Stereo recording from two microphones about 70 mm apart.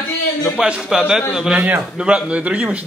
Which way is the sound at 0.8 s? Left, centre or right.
Centre.